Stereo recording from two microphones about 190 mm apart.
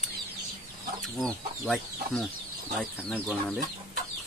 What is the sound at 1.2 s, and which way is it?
Speech, centre (ahead or behind).